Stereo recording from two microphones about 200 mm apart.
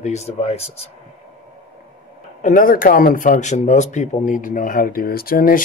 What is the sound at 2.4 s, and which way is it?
Speech, 40° left (ahead or behind).